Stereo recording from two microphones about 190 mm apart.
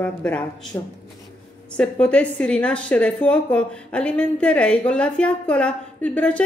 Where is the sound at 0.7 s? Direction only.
15° left (ahead or behind).